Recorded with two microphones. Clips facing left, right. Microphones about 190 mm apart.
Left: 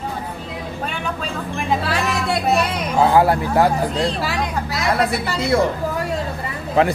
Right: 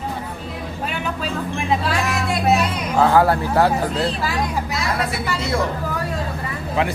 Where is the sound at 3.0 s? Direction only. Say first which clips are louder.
Left 1 dB; 15° left (ahead or behind).